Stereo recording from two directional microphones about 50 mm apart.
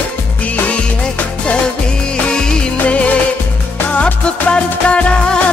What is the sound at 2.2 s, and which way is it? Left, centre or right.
Music, centre.